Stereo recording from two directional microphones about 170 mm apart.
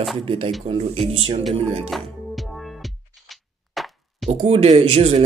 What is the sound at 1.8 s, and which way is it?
Music, centre (ahead or behind).